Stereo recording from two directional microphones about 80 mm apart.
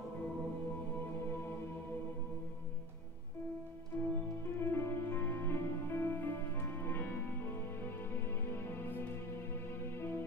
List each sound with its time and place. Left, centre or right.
1.3 s music: left
3.9 s music: left